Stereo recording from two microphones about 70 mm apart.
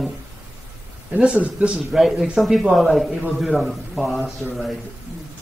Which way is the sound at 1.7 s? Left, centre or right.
Centre.